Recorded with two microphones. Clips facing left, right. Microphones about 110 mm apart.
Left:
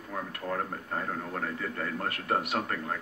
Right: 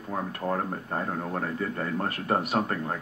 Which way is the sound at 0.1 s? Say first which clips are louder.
Right 5 dB; 35° right (ahead or behind).